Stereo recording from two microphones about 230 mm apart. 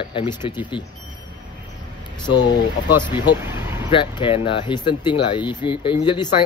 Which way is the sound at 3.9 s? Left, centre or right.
Left.